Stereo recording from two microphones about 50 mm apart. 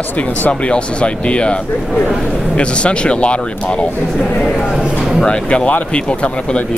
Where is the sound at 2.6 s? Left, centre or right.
Left.